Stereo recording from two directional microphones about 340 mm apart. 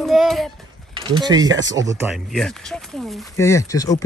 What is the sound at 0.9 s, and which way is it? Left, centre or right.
Speech, centre.